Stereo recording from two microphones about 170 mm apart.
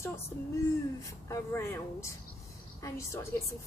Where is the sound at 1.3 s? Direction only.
15° left (ahead or behind).